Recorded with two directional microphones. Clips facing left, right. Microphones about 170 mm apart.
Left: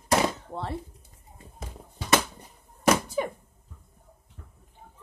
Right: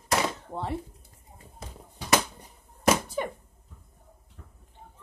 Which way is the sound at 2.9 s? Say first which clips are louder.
Left 1 dB; centre (ahead or behind).